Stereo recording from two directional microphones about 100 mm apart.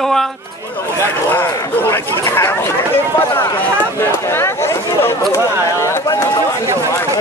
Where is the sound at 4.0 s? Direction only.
25° left (ahead or behind).